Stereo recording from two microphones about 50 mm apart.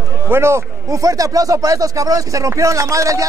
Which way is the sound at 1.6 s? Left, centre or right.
Right.